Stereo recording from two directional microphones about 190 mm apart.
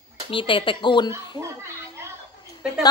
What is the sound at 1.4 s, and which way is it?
Children playing, 15° right (ahead or behind).